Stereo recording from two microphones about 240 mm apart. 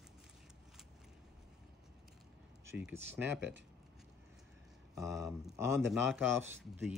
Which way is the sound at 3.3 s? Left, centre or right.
Right.